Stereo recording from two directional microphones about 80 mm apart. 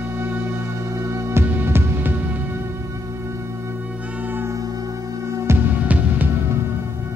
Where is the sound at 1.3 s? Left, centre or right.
Right.